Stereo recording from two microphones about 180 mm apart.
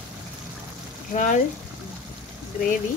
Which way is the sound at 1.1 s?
45° left (ahead or behind).